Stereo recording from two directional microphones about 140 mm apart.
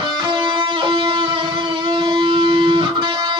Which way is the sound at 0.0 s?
35° right (ahead or behind).